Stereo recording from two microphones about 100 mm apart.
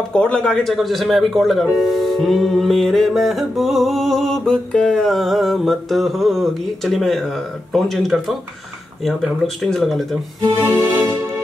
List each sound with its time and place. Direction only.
0.1 s speech: 10° left (ahead or behind)
9.6 s speech: centre (ahead or behind)
10.6 s music: 20° right (ahead or behind)